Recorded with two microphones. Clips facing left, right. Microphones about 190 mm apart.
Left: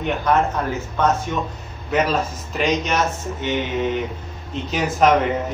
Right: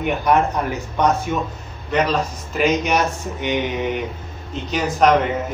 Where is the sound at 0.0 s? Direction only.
10° right (ahead or behind).